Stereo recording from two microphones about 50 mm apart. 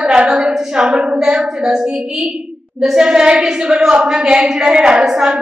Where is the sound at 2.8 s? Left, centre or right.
Centre.